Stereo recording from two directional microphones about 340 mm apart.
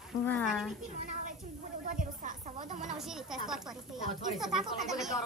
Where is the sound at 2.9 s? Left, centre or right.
Centre.